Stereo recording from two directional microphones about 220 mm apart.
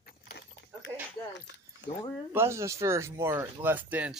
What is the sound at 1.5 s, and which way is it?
Keys jangling, 55° left (ahead or behind).